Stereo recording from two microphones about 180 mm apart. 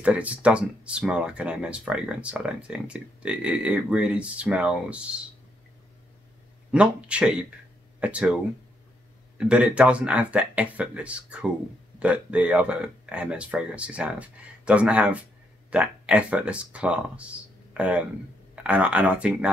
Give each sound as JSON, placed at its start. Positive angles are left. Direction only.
{"t": 0.0, "sound": "speech", "side_deg": -5}
{"t": 6.7, "sound": "speech", "side_deg": -5}
{"t": 9.4, "sound": "speech", "side_deg": -5}